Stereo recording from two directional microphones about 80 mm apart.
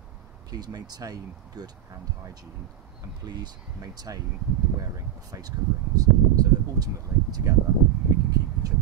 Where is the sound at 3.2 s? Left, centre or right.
Right.